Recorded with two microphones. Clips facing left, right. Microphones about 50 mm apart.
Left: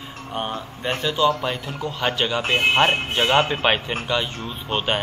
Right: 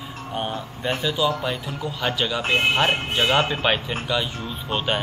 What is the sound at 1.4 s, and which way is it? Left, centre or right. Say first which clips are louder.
Speech: left 1 dB; centre.